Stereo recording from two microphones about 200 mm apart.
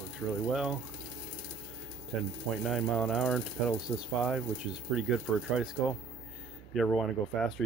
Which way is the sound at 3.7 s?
20° left (ahead or behind).